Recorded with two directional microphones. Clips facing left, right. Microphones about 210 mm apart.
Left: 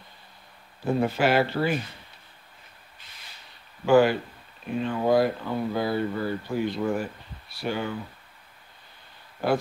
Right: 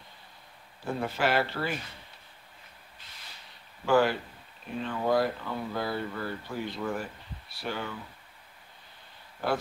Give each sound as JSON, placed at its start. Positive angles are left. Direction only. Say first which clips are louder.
{"t": 0.8, "sound": "speech", "louder": "left 6 dB", "side_deg": 20}
{"t": 3.8, "sound": "speech", "louder": "left 5 dB", "side_deg": 15}